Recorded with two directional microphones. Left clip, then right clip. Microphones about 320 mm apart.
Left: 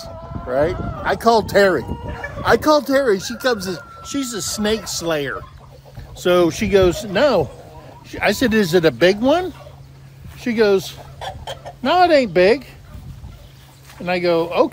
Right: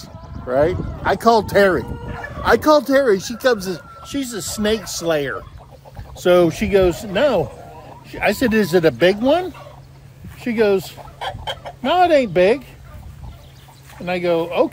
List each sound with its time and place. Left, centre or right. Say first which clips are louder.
0.0 s speech: left 2 dB; centre
11.1 s chicken: right 5 dB; right
11.8 s speech: left 1 dB; centre
14.0 s speech: left 1 dB; centre